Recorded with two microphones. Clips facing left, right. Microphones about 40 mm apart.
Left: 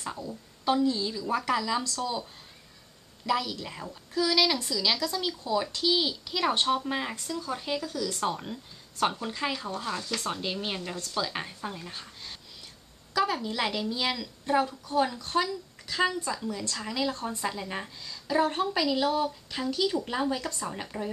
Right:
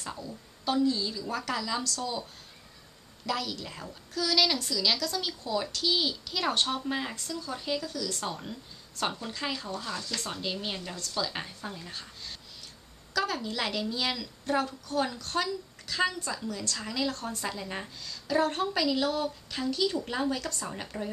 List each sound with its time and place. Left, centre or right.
0.0 s a woman's voice: centre
3.3 s a woman's voice: centre
13.1 s a sound: centre
13.4 s a woman's voice: centre
17.1 s speech: left
17.5 s a woman's voice: centre
20.6 s speech: centre